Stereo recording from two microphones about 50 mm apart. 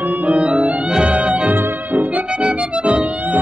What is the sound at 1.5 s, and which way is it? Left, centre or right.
Music, right.